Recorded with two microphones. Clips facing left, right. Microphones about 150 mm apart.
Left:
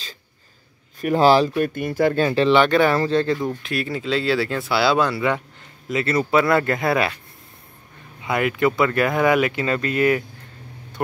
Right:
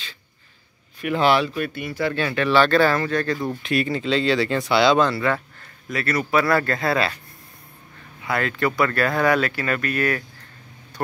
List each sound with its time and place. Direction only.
1.0 s speech: 35° left (ahead or behind)
1.6 s speech: 45° left (ahead or behind)
2.2 s speech: 30° left (ahead or behind)
2.5 s speech: 15° left (ahead or behind)
3.3 s speech: centre (ahead or behind); by 7.2 s 20° left (ahead or behind)
8.2 s speech: 15° left (ahead or behind)